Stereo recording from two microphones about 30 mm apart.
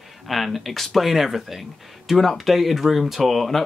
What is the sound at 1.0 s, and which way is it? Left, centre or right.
Speech, centre.